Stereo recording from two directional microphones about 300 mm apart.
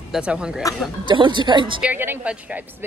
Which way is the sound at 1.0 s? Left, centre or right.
Centre.